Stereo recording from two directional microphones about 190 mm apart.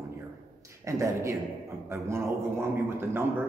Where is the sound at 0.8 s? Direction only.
15° right (ahead or behind).